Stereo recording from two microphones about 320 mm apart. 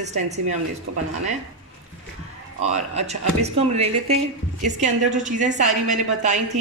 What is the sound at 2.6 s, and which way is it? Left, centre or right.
A woman's voice, right.